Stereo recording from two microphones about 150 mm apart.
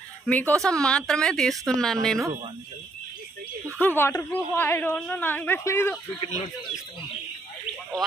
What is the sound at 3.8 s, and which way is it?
Speech, 15° left (ahead or behind).